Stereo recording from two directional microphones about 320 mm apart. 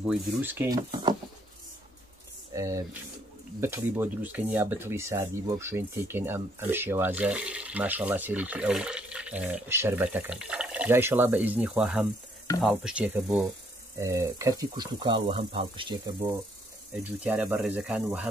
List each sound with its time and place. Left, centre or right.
0.0 s speech: centre
2.5 s speech: centre
17.2 s speech: centre